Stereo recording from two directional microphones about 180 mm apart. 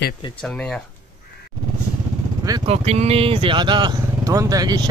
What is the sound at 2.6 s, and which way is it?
Speech, 35° right (ahead or behind).